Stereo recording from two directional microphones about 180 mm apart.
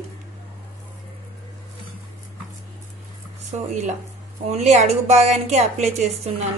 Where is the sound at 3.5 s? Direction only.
40° right (ahead or behind).